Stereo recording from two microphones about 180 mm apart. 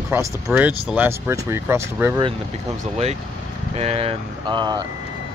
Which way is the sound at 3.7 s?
35° right (ahead or behind).